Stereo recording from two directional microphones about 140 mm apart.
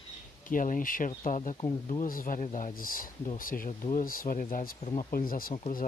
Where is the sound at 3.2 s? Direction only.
75° left (ahead or behind).